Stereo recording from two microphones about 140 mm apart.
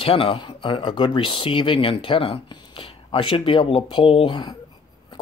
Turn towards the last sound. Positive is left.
turn(degrees=35)  # may be behind; listen again after turning